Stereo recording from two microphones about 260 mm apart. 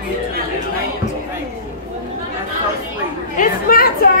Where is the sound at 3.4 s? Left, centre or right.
Left.